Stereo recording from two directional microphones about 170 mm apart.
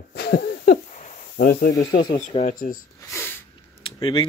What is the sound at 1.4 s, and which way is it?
Speech, 65° left (ahead or behind).